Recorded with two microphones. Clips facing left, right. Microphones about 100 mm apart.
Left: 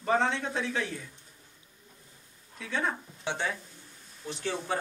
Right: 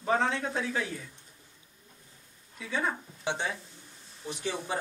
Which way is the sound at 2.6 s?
Centre (ahead or behind).